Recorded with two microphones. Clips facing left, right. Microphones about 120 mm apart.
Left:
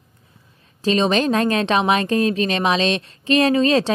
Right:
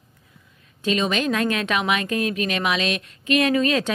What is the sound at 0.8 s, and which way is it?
A woman's voice, 35° left (ahead or behind).